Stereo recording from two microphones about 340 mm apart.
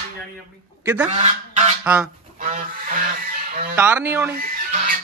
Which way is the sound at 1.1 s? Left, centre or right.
Centre.